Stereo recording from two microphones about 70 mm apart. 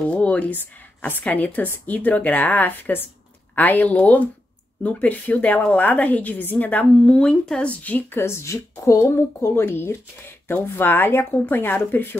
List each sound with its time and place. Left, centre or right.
0.1 s a sound: centre
1.0 s a woman's voice: left
7.8 s speech: left